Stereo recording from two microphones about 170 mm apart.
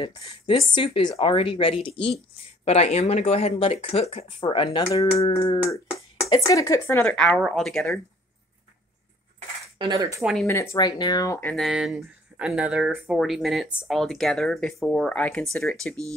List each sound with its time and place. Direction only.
0.0 s a woman's voice: 25° left (ahead or behind)
6.2 s speech: 20° left (ahead or behind); by 8.0 s centre (ahead or behind)
9.8 s cutlery: 25° right (ahead or behind)
10.4 s speech: 15° left (ahead or behind)
11.5 s speech: centre (ahead or behind)